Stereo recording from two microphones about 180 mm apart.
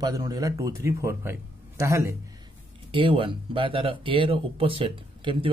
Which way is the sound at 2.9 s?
30° right (ahead or behind).